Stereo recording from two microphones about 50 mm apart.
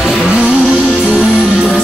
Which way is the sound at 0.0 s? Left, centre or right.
Centre.